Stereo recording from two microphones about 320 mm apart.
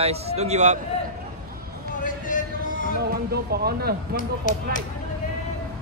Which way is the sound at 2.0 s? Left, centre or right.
Left.